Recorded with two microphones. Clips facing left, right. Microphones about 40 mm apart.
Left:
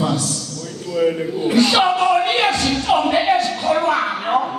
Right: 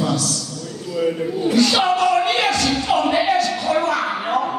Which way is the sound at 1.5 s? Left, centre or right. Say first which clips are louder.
Left 2 dB; left.